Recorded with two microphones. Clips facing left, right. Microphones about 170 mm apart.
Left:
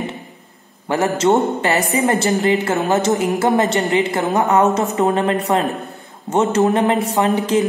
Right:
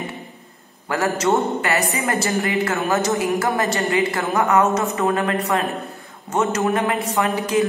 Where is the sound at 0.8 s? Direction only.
25° left (ahead or behind).